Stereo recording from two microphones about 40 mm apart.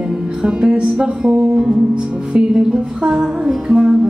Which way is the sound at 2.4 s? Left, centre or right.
Right.